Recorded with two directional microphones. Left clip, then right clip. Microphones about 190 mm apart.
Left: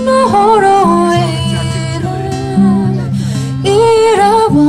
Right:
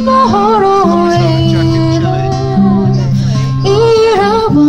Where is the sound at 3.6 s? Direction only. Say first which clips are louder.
Even; 25° left (ahead or behind).